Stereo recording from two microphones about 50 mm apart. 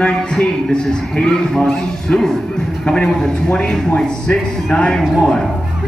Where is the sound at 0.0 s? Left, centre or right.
Centre.